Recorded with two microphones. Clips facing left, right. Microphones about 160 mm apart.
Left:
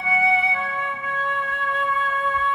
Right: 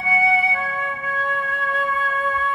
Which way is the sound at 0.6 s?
45° right (ahead or behind).